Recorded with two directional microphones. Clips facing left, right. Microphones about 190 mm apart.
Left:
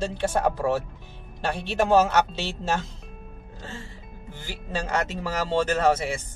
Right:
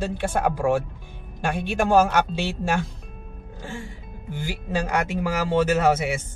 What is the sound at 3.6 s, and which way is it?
Music, 10° right (ahead or behind).